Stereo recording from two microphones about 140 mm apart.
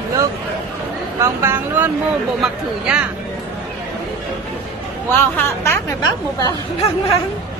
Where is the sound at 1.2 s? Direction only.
20° right (ahead or behind).